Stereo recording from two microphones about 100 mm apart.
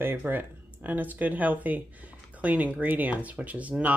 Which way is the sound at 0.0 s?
20° right (ahead or behind).